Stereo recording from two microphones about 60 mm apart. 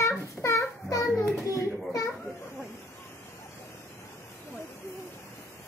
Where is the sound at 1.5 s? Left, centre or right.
Left.